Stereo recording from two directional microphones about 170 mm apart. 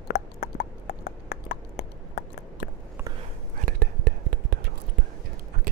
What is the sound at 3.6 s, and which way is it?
Whispering, 55° right (ahead or behind).